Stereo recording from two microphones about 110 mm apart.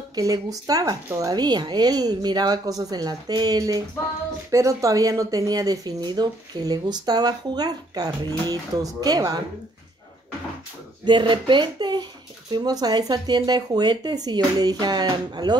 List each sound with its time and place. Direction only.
0.1 s speech: 35° right (ahead or behind)
11.1 s speech: 45° right (ahead or behind)